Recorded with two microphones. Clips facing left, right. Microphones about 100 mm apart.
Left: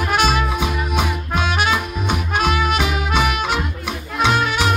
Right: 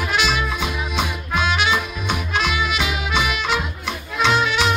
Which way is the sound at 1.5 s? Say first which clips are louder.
Left 1 dB; 45° left (ahead or behind).